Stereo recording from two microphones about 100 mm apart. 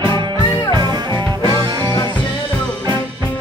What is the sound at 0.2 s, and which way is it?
Music, 50° right (ahead or behind).